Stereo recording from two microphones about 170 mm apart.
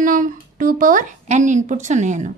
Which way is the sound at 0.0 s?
50° right (ahead or behind).